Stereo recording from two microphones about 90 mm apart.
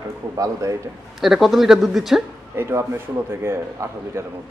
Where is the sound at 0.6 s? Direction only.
35° right (ahead or behind).